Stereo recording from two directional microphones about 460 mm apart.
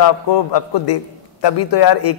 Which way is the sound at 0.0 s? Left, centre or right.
Left.